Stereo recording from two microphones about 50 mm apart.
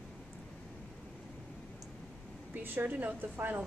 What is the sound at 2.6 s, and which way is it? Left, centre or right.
A woman's voice, right.